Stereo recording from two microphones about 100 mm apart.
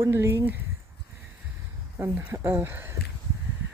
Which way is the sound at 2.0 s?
25° right (ahead or behind).